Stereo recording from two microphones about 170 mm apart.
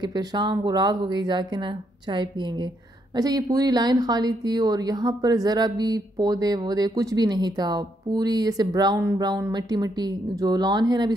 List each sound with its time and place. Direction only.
0.0 s speech: 25° right (ahead or behind)
3.2 s speech: 20° right (ahead or behind)